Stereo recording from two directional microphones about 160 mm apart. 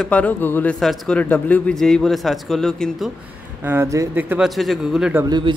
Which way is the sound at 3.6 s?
15° right (ahead or behind).